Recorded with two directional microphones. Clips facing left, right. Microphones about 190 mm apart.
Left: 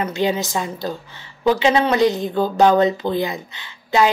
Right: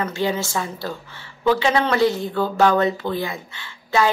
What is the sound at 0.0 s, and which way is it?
Speech, 15° left (ahead or behind).